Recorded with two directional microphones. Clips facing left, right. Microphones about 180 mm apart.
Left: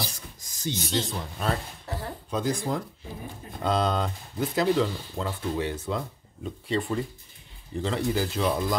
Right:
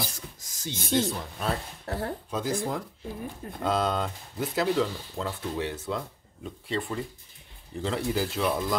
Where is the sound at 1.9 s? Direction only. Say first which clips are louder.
Right 3 dB; 60° right (ahead or behind).